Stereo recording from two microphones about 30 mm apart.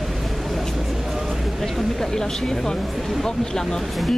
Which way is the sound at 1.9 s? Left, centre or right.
Centre.